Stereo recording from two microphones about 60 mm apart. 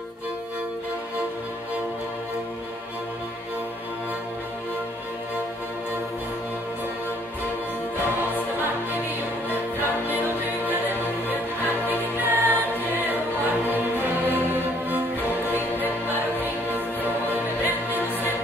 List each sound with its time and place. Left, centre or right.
9.5 s music: right
11.9 s music: right
14.2 s music: right
17.3 s music: right